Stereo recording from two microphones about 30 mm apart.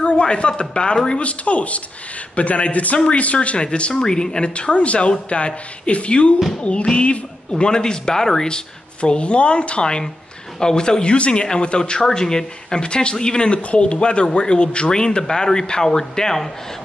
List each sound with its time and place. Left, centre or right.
0.0 s speech: left
1.2 s a man's voice: left
3.3 s speech: left
3.9 s speech: left
4.6 s a man's voice: left
7.5 s speech: left
8.5 s speech: left
11.1 s speech: left
12.8 s speech: left; by 16.4 s centre